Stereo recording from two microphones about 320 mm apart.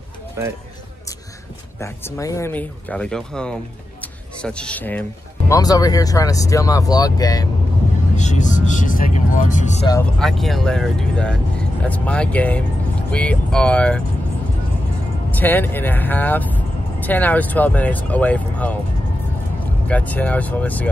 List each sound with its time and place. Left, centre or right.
0.4 s speech: centre
1.8 s speech: centre
8.2 s speech: left
9.9 s speech: centre
15.3 s speech: centre
19.9 s speech: centre